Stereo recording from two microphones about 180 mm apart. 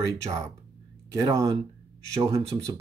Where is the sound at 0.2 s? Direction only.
15° right (ahead or behind).